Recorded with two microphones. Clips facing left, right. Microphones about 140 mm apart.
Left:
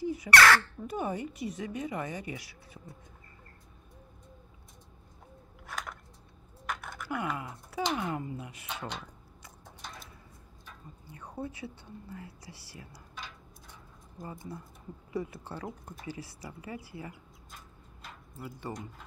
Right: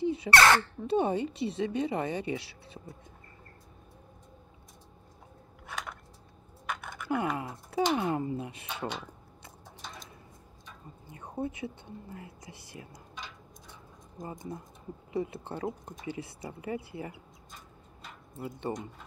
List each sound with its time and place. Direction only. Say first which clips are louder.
0.0 s speech: right 1 dB; 25° right (ahead or behind)
5.7 s a sound: right 1 dB; centre (ahead or behind)
6.6 s typing: even; centre (ahead or behind)
7.1 s speech: right 4 dB; 25° right (ahead or behind)
11.1 s speech: right 4 dB; 20° right (ahead or behind)
14.2 s speech: right 3 dB; 20° right (ahead or behind)
18.3 s speech: right 5 dB; 20° right (ahead or behind)